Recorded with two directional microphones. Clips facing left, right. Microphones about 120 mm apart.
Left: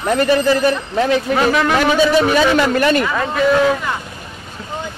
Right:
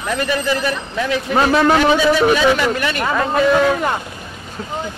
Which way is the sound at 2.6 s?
40° left (ahead or behind).